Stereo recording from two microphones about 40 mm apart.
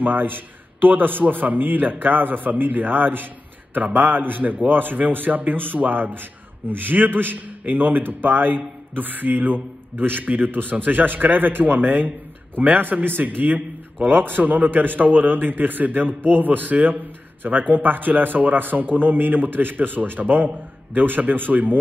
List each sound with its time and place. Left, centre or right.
0.0 s a man's voice: right
13.2 s a man's voice: right
14.0 s a man's voice: right